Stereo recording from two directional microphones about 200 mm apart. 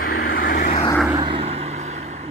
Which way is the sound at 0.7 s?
20° left (ahead or behind).